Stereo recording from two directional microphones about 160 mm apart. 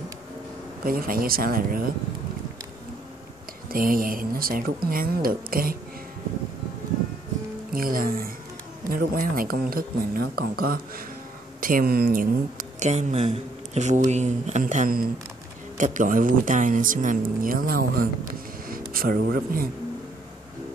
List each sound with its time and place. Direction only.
0.8 s speech: 65° right (ahead or behind)
3.7 s speech: 60° right (ahead or behind)
7.7 s speech: 65° right (ahead or behind)